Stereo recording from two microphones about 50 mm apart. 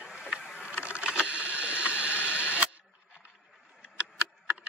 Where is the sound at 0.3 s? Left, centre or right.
Right.